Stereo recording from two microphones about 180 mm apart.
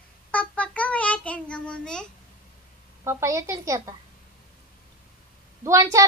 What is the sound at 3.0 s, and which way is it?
Speech, 15° right (ahead or behind).